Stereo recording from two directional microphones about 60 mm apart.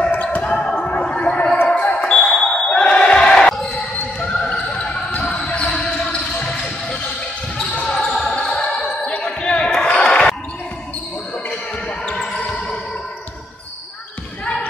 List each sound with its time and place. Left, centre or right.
0.1 s basketball bounce: left
0.5 s basketball bounce: centre
1.0 s a sound: centre
1.9 s basketball bounce: centre
12.1 s basketball bounce: centre
14.4 s basketball bounce: left